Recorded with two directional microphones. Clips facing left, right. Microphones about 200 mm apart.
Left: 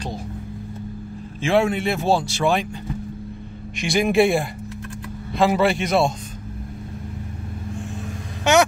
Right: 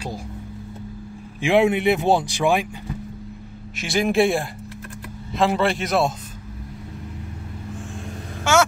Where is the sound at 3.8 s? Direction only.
Centre (ahead or behind).